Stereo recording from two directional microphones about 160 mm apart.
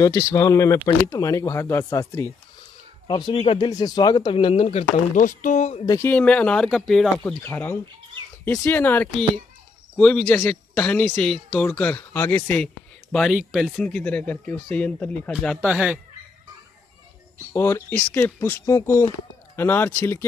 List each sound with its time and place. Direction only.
0.0 s speech: 20° left (ahead or behind); by 4.8 s 35° left (ahead or behind)
5.1 s speech: 55° left (ahead or behind)
5.9 s speech: 15° left (ahead or behind)
7.2 s speech: 15° left (ahead or behind)
15.5 s speech: 5° right (ahead or behind)
17.5 s speech: 15° left (ahead or behind)